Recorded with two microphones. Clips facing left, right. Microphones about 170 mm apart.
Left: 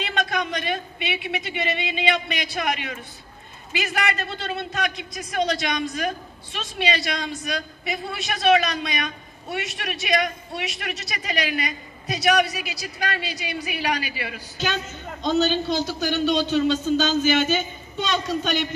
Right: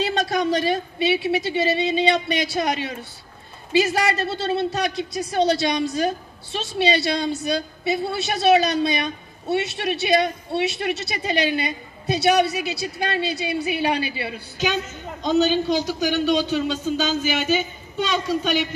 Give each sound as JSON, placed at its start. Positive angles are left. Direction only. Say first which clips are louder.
{"t": 0.0, "sound": "a man's voice", "louder": "right 5 dB", "side_deg": -35}
{"t": 15.2, "sound": "a man's voice", "louder": "right 2 dB", "side_deg": -10}